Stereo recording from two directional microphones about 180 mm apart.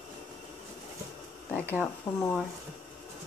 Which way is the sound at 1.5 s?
10° left (ahead or behind).